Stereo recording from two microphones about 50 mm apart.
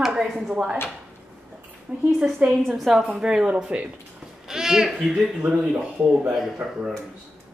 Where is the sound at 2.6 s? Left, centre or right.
Centre.